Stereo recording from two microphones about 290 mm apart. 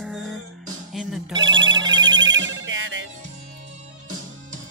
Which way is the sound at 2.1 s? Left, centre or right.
Right.